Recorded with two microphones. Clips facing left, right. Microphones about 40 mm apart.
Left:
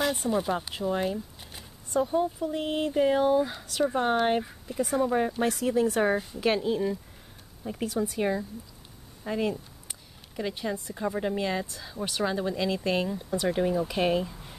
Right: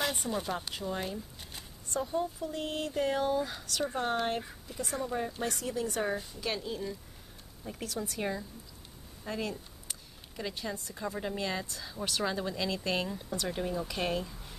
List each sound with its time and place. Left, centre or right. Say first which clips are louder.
0.0 s speech: left 6 dB; centre
5.0 s speech: left 8 dB; left
5.5 s speech: left 9 dB; centre